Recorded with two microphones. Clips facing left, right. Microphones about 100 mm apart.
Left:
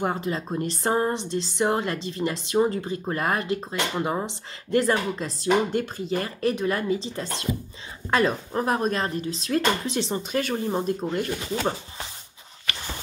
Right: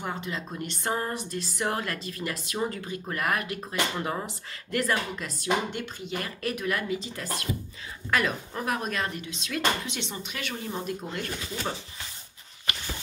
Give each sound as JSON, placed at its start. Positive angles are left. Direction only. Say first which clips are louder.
{"t": 0.0, "sound": "speech", "louder": "left 7 dB", "side_deg": 40}